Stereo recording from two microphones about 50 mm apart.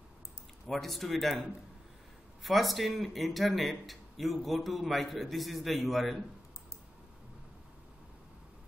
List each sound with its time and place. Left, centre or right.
0.7 s a man's voice: centre
2.4 s a man's voice: centre